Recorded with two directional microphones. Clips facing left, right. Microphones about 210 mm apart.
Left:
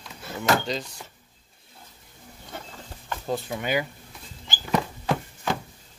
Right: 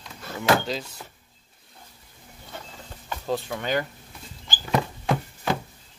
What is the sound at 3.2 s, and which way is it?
Speech, 5° left (ahead or behind).